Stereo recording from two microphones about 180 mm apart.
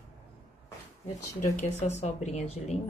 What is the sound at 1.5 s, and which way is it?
A woman's voice, 40° left (ahead or behind).